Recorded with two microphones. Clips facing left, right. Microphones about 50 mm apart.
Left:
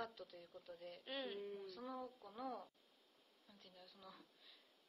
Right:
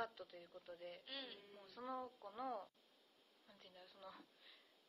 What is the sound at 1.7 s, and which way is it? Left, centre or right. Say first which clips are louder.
A woman's voice: right 1 dB; centre.